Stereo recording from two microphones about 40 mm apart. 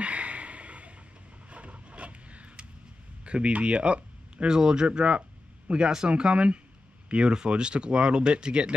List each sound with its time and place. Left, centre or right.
0.0 s a sound: right
3.3 s speech: right
4.5 s speech: centre